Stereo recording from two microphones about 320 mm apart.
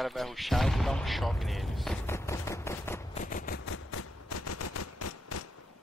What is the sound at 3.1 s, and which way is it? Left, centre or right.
Machine gun, left.